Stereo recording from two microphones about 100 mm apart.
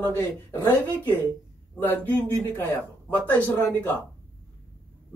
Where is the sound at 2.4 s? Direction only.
20° left (ahead or behind).